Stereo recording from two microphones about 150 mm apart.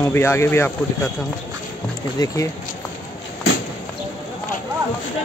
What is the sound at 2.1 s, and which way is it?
Speech, 20° left (ahead or behind).